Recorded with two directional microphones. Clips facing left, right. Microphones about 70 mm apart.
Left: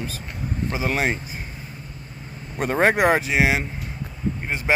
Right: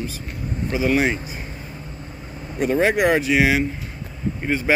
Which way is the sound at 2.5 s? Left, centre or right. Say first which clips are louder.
Right 1 dB; left.